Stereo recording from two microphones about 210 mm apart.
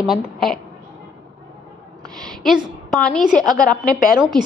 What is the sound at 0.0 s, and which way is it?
Speech, centre (ahead or behind).